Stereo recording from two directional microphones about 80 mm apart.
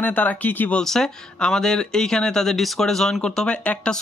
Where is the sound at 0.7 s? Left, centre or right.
Centre.